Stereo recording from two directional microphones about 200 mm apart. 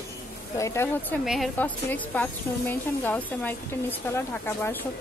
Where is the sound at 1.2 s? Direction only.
Centre (ahead or behind).